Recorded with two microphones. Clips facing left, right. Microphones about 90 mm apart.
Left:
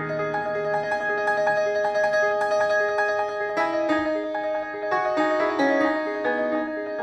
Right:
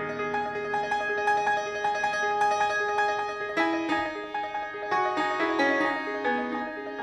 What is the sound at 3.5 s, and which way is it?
Music, 15° left (ahead or behind).